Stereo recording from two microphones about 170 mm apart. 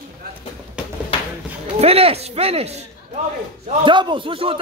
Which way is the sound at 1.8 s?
35° right (ahead or behind).